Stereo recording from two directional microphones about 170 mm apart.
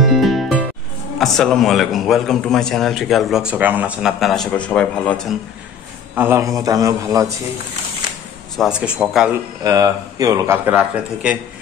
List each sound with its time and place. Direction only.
0.0 s music: centre (ahead or behind)
1.1 s a man's voice: centre (ahead or behind)
6.1 s speech: 15° right (ahead or behind)
8.5 s a man's voice: 5° right (ahead or behind)
9.6 s speech: 20° right (ahead or behind)